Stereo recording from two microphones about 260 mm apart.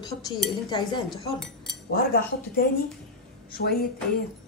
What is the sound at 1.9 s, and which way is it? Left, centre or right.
Speech, left.